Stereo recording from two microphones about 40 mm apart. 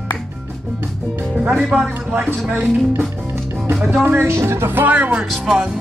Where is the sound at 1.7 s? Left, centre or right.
Right.